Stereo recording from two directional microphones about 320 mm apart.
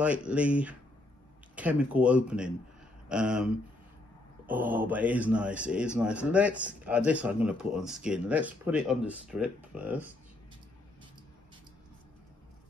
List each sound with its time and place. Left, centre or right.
0.0 s a man's voice: centre